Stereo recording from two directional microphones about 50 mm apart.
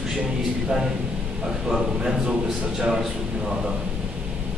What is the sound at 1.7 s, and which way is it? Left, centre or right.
Speech, centre.